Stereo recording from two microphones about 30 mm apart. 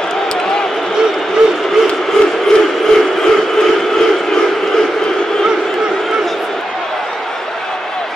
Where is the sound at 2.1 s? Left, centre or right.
Centre.